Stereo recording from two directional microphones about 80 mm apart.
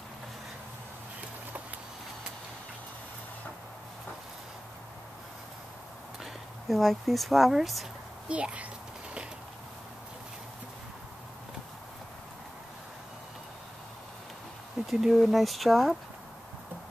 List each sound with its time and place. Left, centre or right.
6.7 s speech: centre
8.3 s a child's voice: centre
14.9 s speech: centre